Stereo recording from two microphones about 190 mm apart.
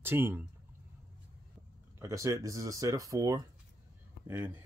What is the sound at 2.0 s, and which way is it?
Speech, 15° right (ahead or behind).